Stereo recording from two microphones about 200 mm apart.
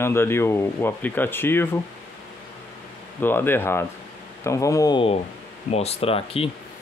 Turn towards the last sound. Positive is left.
turn(degrees=30)  # may be behind; listen again after turning